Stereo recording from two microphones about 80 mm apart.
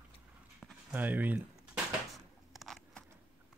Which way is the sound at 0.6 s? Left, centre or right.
Centre.